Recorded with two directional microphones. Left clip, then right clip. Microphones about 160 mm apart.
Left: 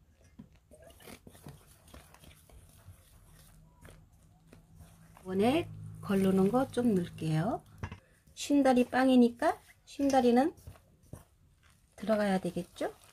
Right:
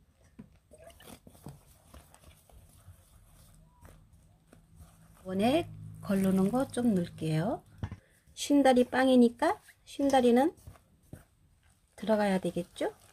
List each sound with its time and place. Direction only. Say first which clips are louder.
5.2 s speech: right 1 dB; 40° right (ahead or behind)
11.9 s speech: right 2 dB; 40° right (ahead or behind)